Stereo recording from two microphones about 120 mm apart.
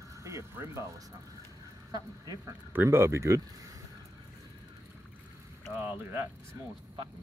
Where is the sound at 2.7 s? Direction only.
20° right (ahead or behind).